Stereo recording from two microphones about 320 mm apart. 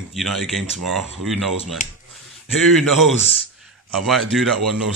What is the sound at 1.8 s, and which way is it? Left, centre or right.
Speech, left.